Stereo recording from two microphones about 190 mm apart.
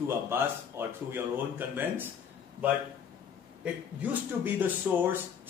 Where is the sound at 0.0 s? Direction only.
10° right (ahead or behind).